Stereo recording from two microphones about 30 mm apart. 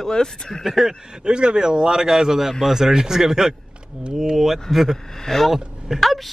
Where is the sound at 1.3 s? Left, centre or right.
Right; by 6.0 s centre.